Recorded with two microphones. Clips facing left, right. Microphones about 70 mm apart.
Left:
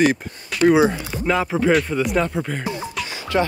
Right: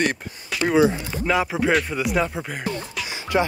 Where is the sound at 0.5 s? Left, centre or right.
Centre.